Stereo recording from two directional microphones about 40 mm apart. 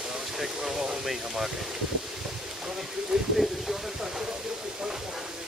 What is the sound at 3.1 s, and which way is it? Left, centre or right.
Speech, centre.